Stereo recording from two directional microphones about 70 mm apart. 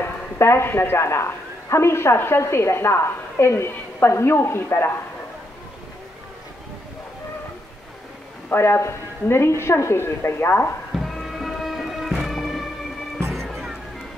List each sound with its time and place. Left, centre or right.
0.0 s a woman's voice: left
8.5 s a woman's voice: left
10.9 s music: centre